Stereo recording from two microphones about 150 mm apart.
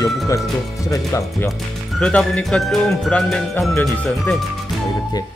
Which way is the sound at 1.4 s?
5° left (ahead or behind).